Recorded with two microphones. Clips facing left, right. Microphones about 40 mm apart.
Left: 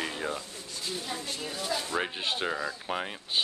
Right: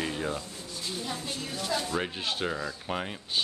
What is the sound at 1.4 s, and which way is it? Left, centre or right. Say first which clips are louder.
Speech: right 2 dB; centre.